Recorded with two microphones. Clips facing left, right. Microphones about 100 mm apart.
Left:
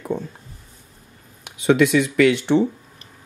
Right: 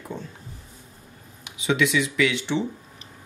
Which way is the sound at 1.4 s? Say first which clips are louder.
Left 7 dB; 50° left (ahead or behind).